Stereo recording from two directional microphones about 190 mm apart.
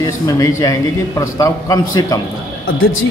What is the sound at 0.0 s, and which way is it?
A man's voice, 20° left (ahead or behind).